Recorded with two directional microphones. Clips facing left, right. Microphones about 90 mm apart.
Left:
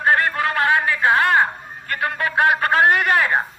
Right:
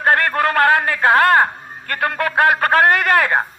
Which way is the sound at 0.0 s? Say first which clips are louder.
Right 2 dB; 50° right (ahead or behind).